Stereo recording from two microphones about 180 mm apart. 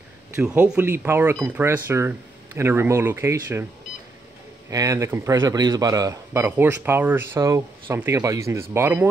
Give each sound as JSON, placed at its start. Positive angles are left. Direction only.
{"t": 0.4, "sound": "a man's voice", "side_deg": -5}
{"t": 4.6, "sound": "a man's voice", "side_deg": -20}